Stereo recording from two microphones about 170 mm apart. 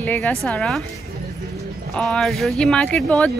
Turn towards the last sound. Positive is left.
turn(degrees=5)  # may be behind; listen again after turning